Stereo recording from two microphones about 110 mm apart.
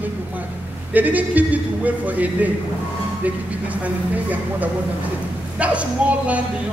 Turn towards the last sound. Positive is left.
turn(degrees=-10)  # may be behind; listen again after turning